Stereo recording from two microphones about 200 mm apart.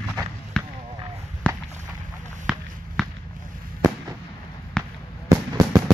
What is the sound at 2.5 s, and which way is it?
Run, 5° right (ahead or behind).